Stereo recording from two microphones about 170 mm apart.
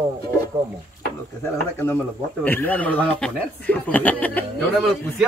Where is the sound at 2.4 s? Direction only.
10° left (ahead or behind).